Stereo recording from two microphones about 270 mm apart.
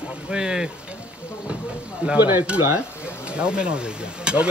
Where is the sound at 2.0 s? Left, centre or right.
Centre.